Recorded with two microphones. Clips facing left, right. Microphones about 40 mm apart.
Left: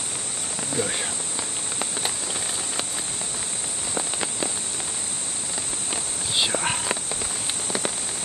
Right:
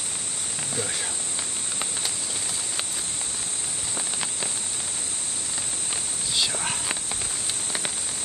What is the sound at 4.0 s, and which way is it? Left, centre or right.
Rain on surface, centre.